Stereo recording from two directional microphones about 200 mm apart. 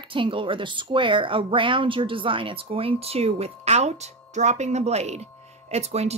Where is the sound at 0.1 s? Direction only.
25° right (ahead or behind).